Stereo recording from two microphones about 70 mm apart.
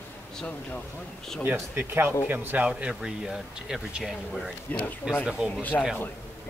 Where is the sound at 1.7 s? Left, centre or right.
Right.